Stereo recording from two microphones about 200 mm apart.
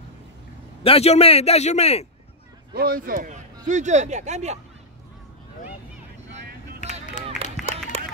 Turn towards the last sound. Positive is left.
turn(degrees=0)  # may be behind; listen again after turning